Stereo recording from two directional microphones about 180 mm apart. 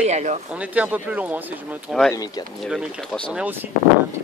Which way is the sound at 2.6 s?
Centre (ahead or behind).